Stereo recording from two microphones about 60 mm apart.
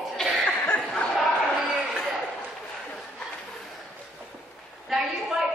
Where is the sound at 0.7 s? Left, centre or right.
Centre.